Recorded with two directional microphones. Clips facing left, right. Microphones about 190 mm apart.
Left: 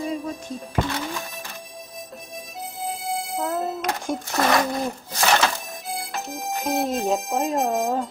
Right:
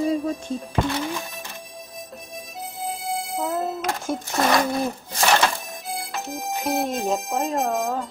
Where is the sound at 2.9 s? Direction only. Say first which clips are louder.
Even; centre (ahead or behind).